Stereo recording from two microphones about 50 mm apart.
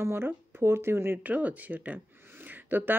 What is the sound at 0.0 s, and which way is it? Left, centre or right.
Speech, right.